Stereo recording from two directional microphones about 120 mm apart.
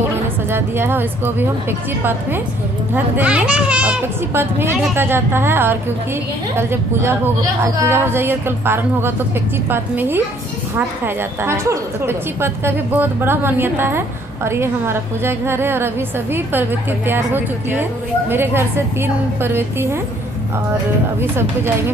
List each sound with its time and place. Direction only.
0.5 s a woman's voice: 20° right (ahead or behind)
21.2 s a woman's voice: 20° right (ahead or behind)